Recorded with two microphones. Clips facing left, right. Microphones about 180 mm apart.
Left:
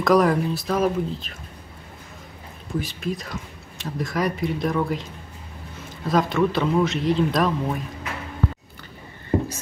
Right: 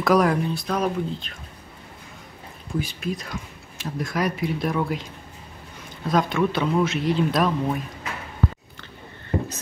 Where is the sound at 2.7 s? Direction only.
Centre (ahead or behind).